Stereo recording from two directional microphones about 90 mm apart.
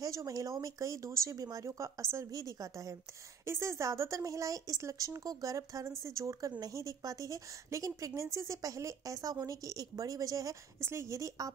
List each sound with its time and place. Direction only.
0.0 s a woman's voice: 40° right (ahead or behind)